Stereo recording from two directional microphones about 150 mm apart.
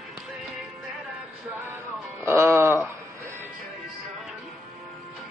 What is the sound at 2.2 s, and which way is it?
Music, 15° right (ahead or behind).